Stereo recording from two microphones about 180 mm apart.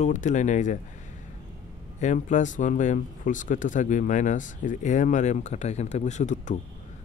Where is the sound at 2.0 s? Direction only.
40° left (ahead or behind).